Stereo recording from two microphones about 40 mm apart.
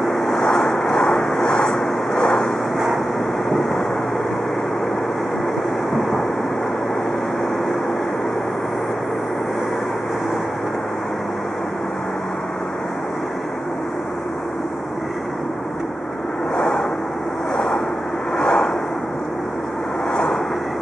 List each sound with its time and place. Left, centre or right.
0.1 s vehicle: centre
3.4 s vehicle: centre
16.5 s vehicle: centre
18.4 s a sound: centre